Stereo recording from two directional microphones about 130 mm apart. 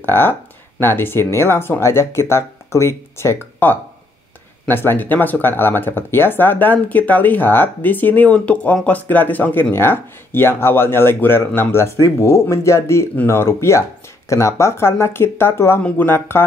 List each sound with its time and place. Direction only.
0.0 s speech: 15° left (ahead or behind)